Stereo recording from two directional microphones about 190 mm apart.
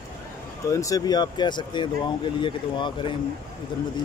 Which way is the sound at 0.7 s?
15° left (ahead or behind).